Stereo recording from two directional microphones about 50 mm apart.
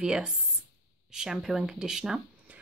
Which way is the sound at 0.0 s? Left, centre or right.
Centre.